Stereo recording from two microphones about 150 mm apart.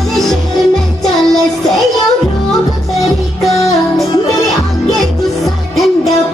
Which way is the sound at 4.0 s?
Centre (ahead or behind).